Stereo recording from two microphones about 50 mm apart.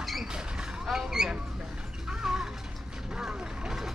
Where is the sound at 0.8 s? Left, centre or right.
Centre.